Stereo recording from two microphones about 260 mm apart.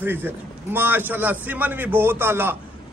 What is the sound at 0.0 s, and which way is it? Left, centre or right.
A man's voice, centre.